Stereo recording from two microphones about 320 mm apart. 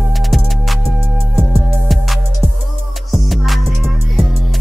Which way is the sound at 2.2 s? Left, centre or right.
Left.